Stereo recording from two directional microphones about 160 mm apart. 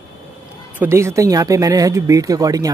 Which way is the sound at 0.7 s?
15° right (ahead or behind).